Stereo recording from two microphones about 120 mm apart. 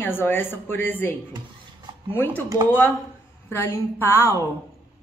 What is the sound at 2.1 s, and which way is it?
Speech, 20° left (ahead or behind).